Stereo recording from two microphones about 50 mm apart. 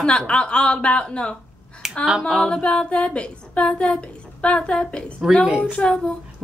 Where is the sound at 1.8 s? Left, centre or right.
Centre.